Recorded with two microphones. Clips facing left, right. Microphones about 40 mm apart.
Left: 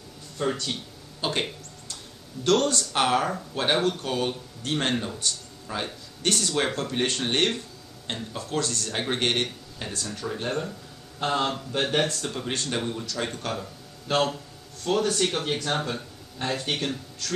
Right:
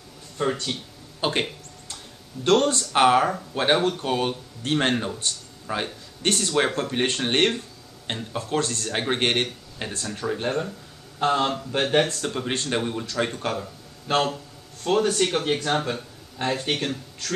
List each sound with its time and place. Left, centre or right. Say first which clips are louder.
0.4 s speech: right 2 dB; right
2.4 s speech: right 3 dB; right